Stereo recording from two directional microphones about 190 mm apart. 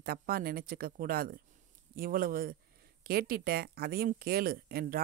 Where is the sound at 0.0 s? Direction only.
50° right (ahead or behind).